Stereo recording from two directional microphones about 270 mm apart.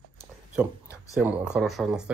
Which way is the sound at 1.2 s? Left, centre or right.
Centre.